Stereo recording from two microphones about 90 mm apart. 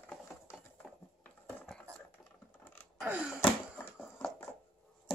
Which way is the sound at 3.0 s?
10° right (ahead or behind).